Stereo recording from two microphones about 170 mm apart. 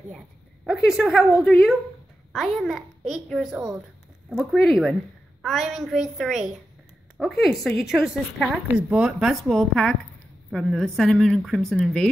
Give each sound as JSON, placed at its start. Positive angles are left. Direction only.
{"t": 0.8, "sound": "a woman's voice", "side_deg": 0}